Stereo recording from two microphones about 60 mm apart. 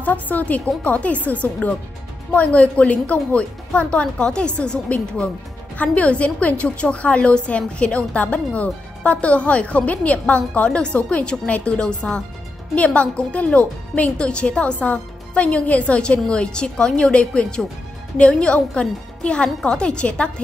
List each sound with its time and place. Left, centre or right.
0.0 s a woman's voice: left